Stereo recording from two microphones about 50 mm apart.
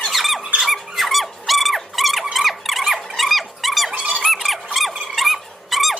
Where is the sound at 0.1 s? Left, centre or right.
Centre.